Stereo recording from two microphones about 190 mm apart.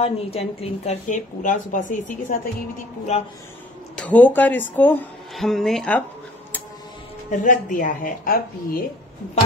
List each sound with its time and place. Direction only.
0.0 s a woman's voice: 30° left (ahead or behind)
3.9 s speech: 5° left (ahead or behind)
7.2 s speech: 40° left (ahead or behind)